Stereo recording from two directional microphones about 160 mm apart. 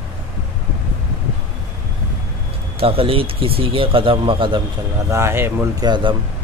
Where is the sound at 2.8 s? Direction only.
35° right (ahead or behind).